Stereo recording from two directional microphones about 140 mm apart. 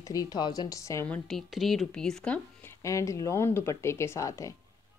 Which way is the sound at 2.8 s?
20° left (ahead or behind).